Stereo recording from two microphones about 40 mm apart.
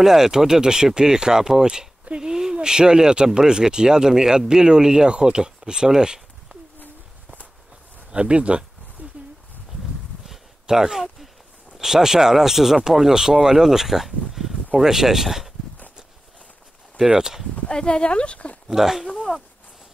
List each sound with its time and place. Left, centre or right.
0.0 s speech: centre
8.1 s speech: right
10.7 s speech: centre
14.3 s a sound: centre
14.8 s speech: centre
17.0 s speech: centre
17.6 s speech: left
18.7 s speech: centre